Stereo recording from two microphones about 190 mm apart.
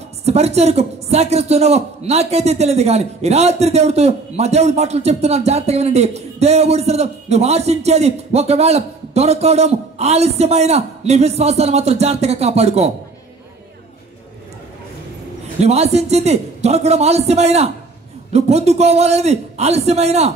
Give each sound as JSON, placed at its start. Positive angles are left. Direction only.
{"t": 0.2, "sound": "a man's voice", "side_deg": -35}
{"t": 15.6, "sound": "a man's voice", "side_deg": -35}